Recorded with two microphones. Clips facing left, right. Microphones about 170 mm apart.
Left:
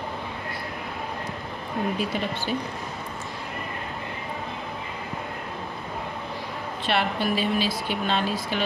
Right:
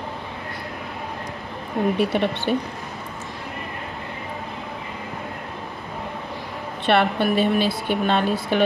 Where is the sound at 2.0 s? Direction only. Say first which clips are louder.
Right 6 dB; 65° right (ahead or behind).